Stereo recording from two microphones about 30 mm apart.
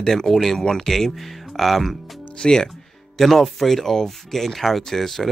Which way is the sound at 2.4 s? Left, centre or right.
Left.